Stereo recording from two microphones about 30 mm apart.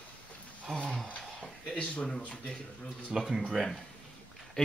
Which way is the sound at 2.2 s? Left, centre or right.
Left.